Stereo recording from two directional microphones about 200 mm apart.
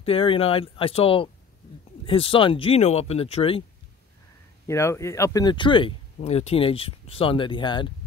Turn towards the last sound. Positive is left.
turn(degrees=25)  # may be behind; listen again after turning